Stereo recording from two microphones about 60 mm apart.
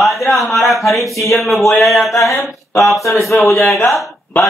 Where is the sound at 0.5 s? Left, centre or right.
Left.